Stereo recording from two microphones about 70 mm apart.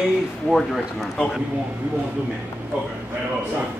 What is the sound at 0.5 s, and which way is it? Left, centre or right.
Speech, centre.